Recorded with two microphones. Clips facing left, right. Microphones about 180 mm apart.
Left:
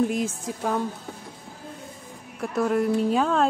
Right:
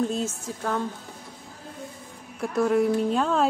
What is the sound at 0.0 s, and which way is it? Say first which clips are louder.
Speech: left 2 dB; 15° left (ahead or behind).